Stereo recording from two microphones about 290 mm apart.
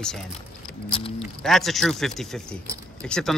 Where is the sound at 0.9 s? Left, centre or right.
Centre.